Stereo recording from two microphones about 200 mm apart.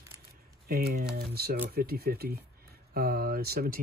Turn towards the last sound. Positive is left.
turn(degrees=-50)  # may be behind; listen again after turning